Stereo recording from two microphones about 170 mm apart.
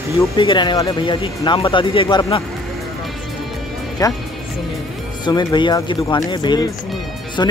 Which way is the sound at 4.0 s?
20° left (ahead or behind).